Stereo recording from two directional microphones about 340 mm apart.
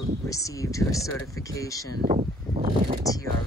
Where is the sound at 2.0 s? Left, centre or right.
Right.